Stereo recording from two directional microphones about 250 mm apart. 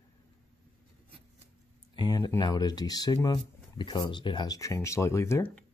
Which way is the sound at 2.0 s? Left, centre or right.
Centre.